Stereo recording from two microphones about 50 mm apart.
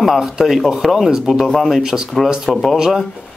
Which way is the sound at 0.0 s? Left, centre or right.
Centre.